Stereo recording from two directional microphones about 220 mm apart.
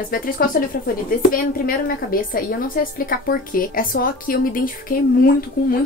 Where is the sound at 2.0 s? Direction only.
40° left (ahead or behind).